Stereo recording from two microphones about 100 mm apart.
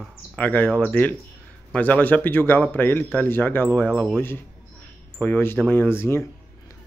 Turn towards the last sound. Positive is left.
turn(degrees=25)  # may be behind; listen again after turning